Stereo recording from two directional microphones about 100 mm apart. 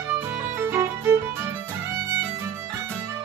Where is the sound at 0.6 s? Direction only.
25° right (ahead or behind).